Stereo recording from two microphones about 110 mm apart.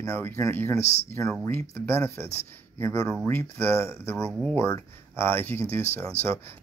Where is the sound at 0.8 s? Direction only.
80° left.